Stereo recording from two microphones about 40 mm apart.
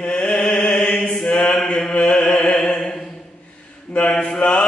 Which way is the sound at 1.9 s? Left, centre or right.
Left.